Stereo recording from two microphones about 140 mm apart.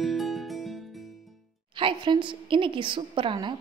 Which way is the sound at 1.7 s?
35° right (ahead or behind).